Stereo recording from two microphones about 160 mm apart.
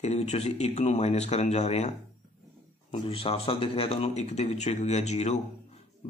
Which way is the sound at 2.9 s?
35° left (ahead or behind).